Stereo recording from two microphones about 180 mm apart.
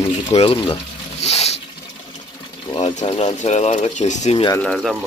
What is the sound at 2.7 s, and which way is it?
Speech, 30° left (ahead or behind).